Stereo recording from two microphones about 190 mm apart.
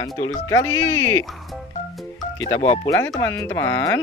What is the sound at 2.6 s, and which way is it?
Speech, 30° left (ahead or behind).